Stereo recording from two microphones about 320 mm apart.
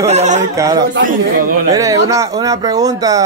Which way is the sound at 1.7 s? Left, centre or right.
Centre.